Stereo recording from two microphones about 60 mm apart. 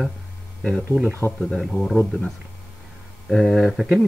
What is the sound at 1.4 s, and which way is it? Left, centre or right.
Speech, centre.